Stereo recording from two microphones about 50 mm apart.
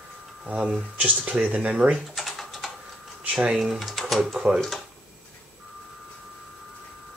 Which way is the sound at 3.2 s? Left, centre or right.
Right.